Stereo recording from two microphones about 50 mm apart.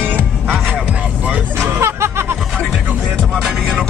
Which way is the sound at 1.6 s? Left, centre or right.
Right.